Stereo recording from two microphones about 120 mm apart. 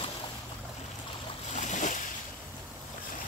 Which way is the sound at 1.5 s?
90° left.